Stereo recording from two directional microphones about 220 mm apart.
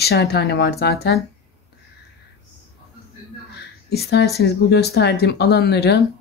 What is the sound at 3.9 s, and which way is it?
Speech, 45° left (ahead or behind).